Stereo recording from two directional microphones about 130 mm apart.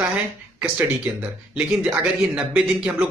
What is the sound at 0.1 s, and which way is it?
Speech, 10° right (ahead or behind).